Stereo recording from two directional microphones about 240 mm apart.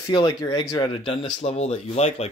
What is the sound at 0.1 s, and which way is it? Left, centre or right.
Speech, centre.